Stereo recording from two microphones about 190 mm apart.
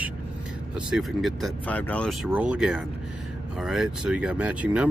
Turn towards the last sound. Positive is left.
turn(degrees=-5)  # may be behind; listen again after turning